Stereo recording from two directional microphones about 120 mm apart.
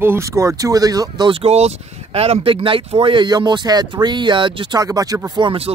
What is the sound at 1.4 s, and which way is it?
Speech, 60° right (ahead or behind).